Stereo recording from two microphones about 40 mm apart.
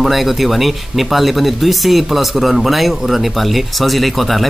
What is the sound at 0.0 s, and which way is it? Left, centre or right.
Speech, centre.